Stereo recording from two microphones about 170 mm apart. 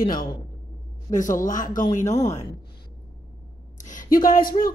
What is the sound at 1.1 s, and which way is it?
Speech, 50° left (ahead or behind).